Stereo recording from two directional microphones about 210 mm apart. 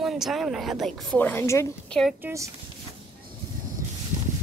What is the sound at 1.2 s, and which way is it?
Speech, 10° left (ahead or behind).